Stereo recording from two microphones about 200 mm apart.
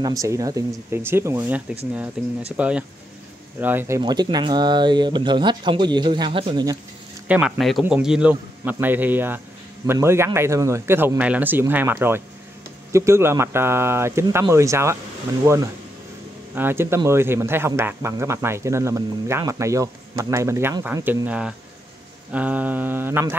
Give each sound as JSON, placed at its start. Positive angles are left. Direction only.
{"t": 0.0, "sound": "a man's voice", "side_deg": -15}
{"t": 7.2, "sound": "a man's voice", "side_deg": -5}